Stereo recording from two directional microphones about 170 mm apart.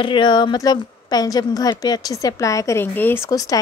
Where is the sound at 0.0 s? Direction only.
30° left (ahead or behind).